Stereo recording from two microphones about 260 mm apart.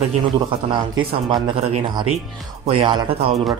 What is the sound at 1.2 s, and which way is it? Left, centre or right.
Speech, centre.